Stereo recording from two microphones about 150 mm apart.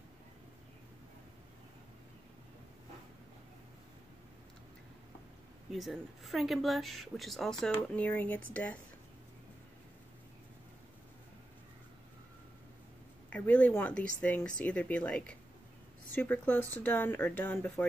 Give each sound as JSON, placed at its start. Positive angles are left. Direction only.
{"t": 5.7, "sound": "speech", "side_deg": 0}
{"t": 13.3, "sound": "speech", "side_deg": 10}